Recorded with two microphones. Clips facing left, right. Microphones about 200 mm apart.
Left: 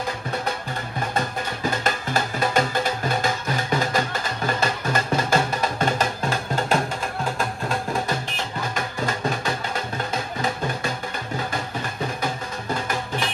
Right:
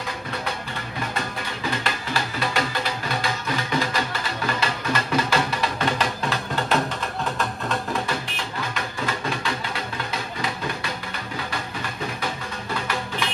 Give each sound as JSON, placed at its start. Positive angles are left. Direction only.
{"t": 1.1, "sound": "music", "side_deg": 45}
{"t": 8.7, "sound": "music", "side_deg": 45}